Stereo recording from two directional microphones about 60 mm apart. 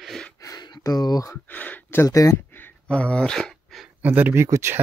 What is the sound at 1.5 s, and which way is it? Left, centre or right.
Speech, left.